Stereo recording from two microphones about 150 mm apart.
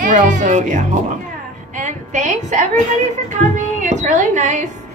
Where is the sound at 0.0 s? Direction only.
60° right (ahead or behind).